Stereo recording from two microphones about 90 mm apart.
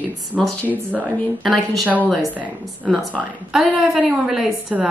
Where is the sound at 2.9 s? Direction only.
5° left (ahead or behind).